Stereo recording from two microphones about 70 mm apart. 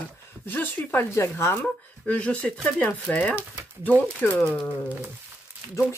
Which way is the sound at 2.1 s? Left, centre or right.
Centre.